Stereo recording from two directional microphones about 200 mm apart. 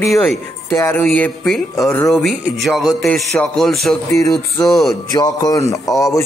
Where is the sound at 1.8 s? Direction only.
15° left (ahead or behind).